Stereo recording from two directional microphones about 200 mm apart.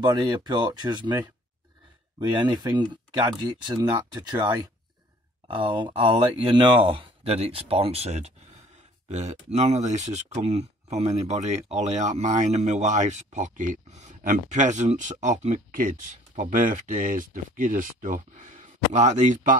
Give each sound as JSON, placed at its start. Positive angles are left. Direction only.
{"t": 0.0, "sound": "speech", "side_deg": -20}